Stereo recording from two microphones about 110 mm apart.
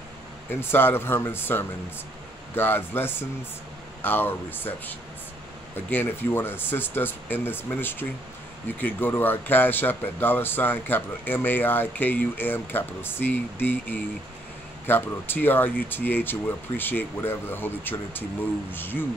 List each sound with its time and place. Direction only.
0.5 s speech: 20° left (ahead or behind)